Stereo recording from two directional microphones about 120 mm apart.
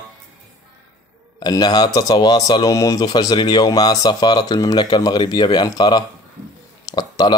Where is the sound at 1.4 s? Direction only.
35° left (ahead or behind).